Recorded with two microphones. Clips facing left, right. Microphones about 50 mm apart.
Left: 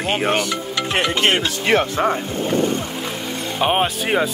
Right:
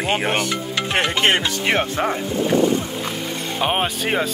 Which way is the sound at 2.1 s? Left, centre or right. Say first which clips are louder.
Right 2 dB; left.